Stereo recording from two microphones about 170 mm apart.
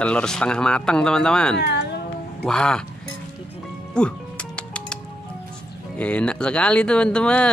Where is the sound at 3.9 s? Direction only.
5° left (ahead or behind).